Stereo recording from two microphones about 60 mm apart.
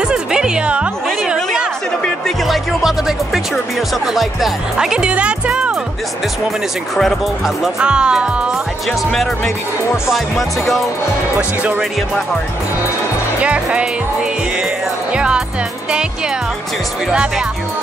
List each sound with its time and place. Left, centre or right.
0.1 s music: centre
1.2 s chatter: centre
2.4 s music: centre
4.0 s speech: centre
7.0 s speech: centre
7.8 s speech: centre
10.1 s speech: centre
11.3 s speech: right
13.4 s speech: centre
15.1 s music: centre